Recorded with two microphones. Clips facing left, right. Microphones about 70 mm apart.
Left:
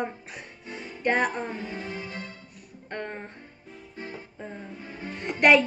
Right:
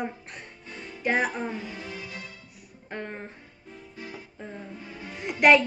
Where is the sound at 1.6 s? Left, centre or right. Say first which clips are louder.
Left 3 dB; left.